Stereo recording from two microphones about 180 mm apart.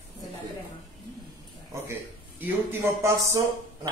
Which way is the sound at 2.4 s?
15° right (ahead or behind).